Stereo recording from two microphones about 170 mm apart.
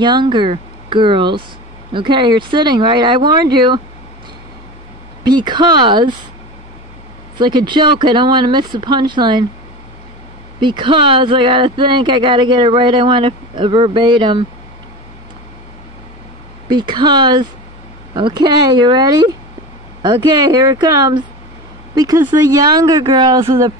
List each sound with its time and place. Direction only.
0.0 s speech: 25° right (ahead or behind)
5.2 s speech: 25° right (ahead or behind)
7.3 s speech: 25° right (ahead or behind)
10.6 s speech: 30° right (ahead or behind)
16.6 s speech: 25° right (ahead or behind)